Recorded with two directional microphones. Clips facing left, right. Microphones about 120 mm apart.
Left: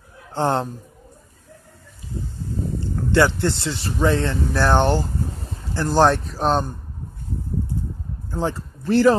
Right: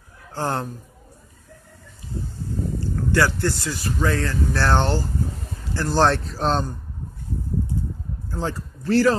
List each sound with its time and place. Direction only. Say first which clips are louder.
0.3 s a man's voice: left 5 dB; 20° left (ahead or behind)
3.1 s speech: left 3 dB; 20° left (ahead or behind)
8.3 s speech: left 3 dB; 20° left (ahead or behind)